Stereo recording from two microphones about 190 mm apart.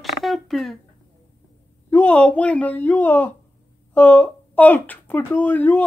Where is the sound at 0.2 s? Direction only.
Centre (ahead or behind).